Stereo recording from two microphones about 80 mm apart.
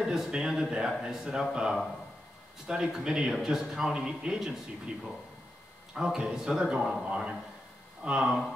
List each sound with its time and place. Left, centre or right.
0.0 s speech: centre
5.9 s a man's voice: centre